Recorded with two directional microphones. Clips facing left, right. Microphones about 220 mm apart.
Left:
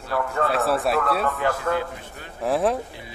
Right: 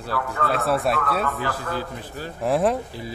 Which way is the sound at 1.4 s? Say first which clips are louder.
Left 4 dB; 35° right (ahead or behind).